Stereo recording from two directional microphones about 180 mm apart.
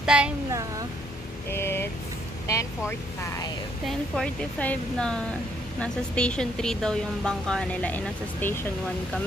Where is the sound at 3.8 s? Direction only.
Centre (ahead or behind).